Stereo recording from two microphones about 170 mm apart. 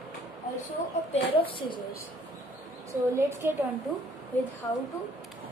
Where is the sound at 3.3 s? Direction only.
15° right (ahead or behind).